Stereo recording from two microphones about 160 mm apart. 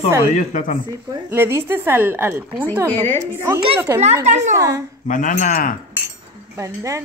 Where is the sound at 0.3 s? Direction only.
50° left (ahead or behind).